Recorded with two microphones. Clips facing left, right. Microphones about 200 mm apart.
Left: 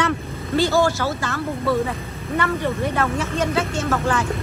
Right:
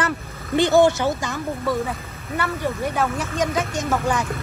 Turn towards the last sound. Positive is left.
turn(degrees=-10)  # may be behind; listen again after turning